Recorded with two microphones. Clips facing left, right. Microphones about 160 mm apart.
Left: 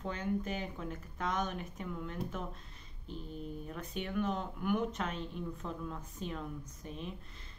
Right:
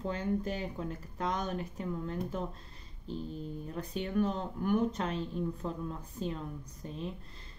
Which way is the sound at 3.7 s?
35° right (ahead or behind).